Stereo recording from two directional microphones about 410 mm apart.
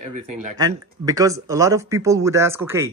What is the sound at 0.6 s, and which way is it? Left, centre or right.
Speech, centre.